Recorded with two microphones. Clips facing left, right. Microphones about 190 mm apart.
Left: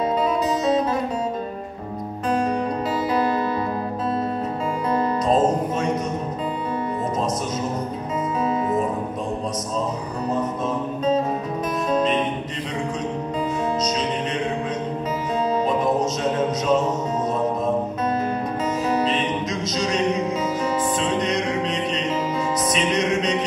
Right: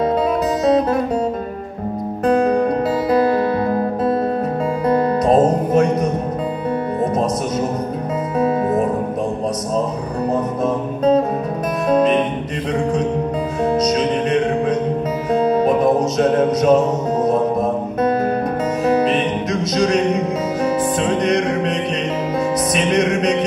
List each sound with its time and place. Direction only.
0.7 s music: 60° right (ahead or behind)
2.2 s music: 60° right (ahead or behind)
4.8 s music: 60° right (ahead or behind)
8.4 s music: 60° right (ahead or behind)
10.3 s music: 60° right (ahead or behind)
13.7 s music: 60° right (ahead or behind)
21.2 s music: 60° right (ahead or behind)